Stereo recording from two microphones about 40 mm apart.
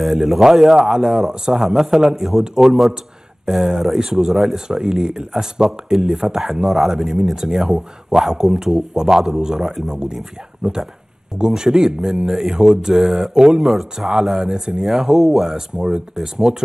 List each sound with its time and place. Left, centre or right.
0.0 s a man's voice: centre